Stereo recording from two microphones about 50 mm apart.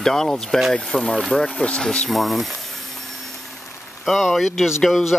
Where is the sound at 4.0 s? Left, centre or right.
Centre.